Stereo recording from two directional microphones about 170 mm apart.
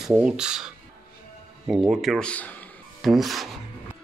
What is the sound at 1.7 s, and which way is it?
Music, centre (ahead or behind).